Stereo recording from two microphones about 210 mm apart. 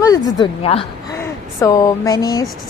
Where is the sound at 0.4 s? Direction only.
25° left (ahead or behind).